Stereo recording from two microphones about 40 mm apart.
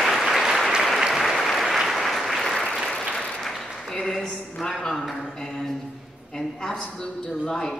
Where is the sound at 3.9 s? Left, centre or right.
Centre.